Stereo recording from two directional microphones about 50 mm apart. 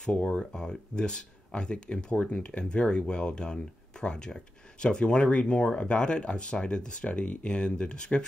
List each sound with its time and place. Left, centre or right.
0.0 s speech: left